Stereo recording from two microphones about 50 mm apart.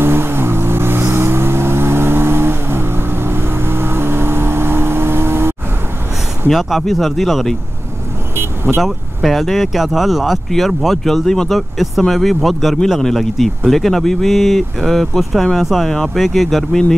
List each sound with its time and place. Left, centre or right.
0.0 s vehicle: right
6.5 s speech: centre
8.4 s vehicle: right
8.8 s speech: centre